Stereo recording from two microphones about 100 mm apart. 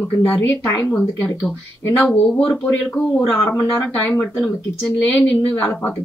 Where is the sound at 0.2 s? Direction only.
20° left (ahead or behind).